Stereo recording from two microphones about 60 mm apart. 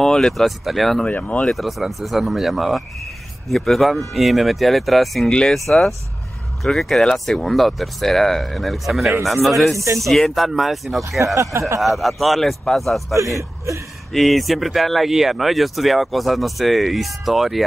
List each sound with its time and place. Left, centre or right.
0.0 s speech: centre
1.0 s speech: left
1.4 s speech: centre
13.1 s a man's voice: right
14.1 s speech: centre